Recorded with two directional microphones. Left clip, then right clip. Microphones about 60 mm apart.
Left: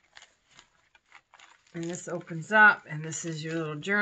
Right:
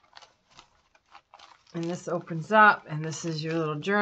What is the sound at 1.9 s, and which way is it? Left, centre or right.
Speech, right.